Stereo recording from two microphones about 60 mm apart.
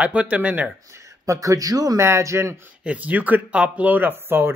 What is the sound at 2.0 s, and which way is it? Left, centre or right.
Speech, right.